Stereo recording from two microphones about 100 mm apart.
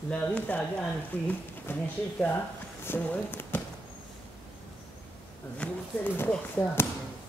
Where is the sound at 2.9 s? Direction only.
20° left (ahead or behind).